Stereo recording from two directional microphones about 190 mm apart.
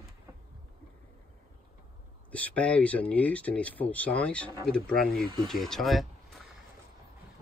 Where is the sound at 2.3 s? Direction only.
5° left (ahead or behind).